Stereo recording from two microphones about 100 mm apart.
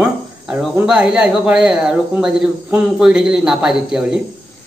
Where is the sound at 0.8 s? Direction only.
10° right (ahead or behind).